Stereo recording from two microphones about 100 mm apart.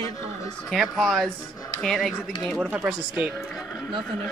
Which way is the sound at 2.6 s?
10° right (ahead or behind).